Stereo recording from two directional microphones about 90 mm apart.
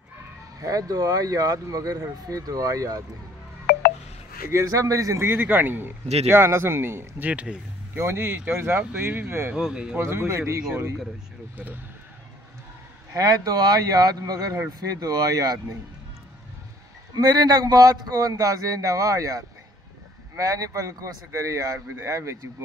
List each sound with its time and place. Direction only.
0.6 s speech: 40° right (ahead or behind)
4.5 s speech: 35° right (ahead or behind)
5.2 s a man's voice: 25° right (ahead or behind)
7.2 s speech: 15° right (ahead or behind)
8.0 s a man's voice: 30° right (ahead or behind)
9.6 s speech: 10° right (ahead or behind)
9.9 s a man's voice: 25° right (ahead or behind)
13.1 s speech: 45° right (ahead or behind)
17.1 s speech: 45° right (ahead or behind)